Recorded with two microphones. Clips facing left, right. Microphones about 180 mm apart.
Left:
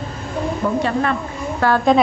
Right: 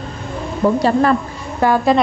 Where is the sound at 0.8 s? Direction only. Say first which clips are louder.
Right 5 dB; 40° right (ahead or behind).